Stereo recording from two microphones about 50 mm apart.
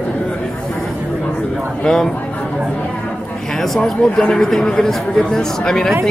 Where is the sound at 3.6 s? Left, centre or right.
Centre.